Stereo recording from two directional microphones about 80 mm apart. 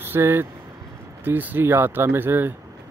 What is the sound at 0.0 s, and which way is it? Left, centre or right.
Speech, right.